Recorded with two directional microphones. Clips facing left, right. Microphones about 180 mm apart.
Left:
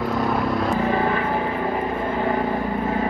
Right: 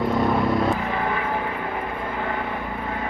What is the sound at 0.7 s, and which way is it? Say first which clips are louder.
Vehicle: left 5 dB; 25° left (ahead or behind).